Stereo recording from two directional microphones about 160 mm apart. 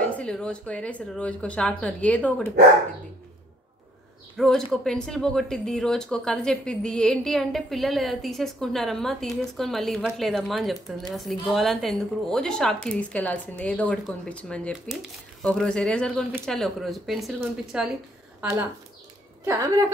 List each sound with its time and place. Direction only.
0.1 s speech: 5° left (ahead or behind)
4.4 s a woman's voice: 5° left (ahead or behind)
19.4 s a woman's voice: 20° right (ahead or behind)